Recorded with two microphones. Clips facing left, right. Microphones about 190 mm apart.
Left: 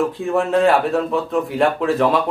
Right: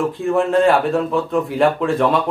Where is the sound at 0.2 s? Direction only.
Centre (ahead or behind).